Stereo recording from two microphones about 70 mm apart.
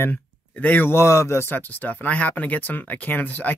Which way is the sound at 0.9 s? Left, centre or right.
Left.